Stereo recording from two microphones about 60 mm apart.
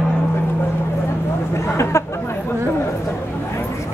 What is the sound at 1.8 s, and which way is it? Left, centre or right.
Speech, left.